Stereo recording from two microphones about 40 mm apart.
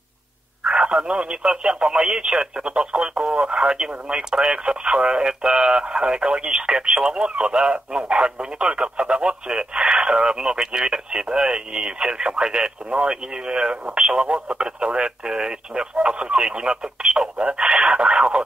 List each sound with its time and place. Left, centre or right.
0.7 s speech: right